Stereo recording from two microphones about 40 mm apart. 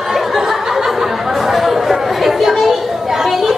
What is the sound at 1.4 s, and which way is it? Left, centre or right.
Chatter, centre.